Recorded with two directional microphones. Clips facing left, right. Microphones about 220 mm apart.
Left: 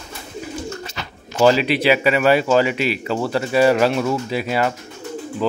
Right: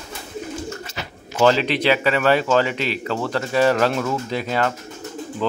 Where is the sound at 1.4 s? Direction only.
10° left (ahead or behind).